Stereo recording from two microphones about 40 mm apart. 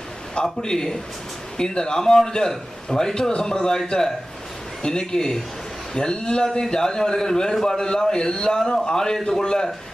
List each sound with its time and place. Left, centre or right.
0.3 s a man's voice: centre